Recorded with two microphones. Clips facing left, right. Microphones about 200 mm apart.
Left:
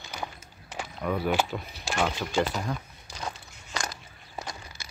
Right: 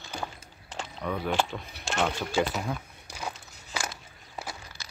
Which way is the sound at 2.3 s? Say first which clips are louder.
Even; 5° right (ahead or behind).